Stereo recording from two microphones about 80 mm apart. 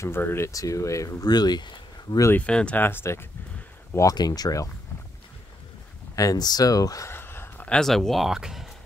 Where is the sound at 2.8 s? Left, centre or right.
Left.